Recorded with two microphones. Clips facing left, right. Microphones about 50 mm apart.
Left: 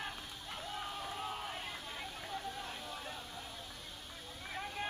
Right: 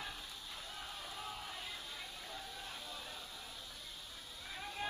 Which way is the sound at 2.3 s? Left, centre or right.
Left.